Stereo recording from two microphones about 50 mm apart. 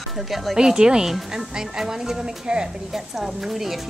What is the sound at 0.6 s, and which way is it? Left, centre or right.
Speech, centre.